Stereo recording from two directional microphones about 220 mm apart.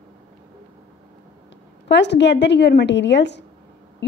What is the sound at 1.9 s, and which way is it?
Speech, 50° left (ahead or behind).